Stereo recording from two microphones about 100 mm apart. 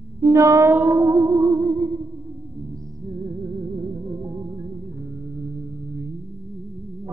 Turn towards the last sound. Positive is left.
turn(degrees=-45)  # may be behind; listen again after turning